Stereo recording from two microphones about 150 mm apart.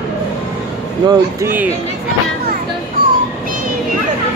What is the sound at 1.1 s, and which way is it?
Speech, 15° right (ahead or behind).